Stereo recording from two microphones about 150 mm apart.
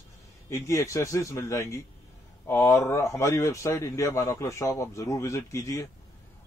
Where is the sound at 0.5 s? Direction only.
20° left (ahead or behind).